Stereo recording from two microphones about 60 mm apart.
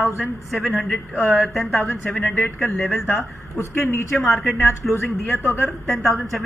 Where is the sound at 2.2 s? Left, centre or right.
Left.